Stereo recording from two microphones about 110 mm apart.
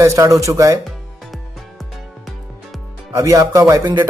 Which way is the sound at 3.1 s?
30° right (ahead or behind).